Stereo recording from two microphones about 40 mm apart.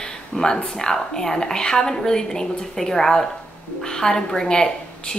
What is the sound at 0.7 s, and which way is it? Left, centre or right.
A woman's voice, centre.